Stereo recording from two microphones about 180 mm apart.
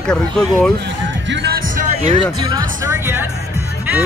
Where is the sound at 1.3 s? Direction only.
70° right (ahead or behind).